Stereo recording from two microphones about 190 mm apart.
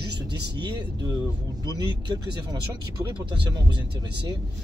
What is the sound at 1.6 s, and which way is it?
Speech, 20° right (ahead or behind).